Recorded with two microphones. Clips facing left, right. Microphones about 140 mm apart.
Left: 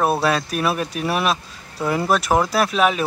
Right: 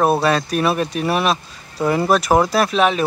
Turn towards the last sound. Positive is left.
turn(degrees=5)  # may be behind; listen again after turning